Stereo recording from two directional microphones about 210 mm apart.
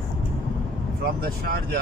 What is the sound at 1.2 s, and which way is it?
Speech, 45° right (ahead or behind).